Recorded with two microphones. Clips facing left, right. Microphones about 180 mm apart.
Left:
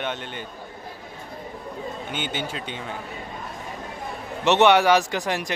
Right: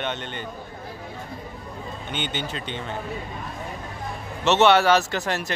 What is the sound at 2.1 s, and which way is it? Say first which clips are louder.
Speech: right 2 dB; 5° left (ahead or behind).